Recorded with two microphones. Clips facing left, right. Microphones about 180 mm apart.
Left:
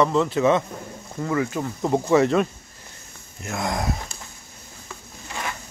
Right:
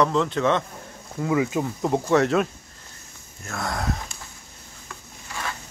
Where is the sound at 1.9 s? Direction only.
Centre (ahead or behind).